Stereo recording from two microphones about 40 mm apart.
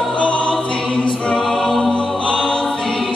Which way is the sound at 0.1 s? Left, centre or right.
Left.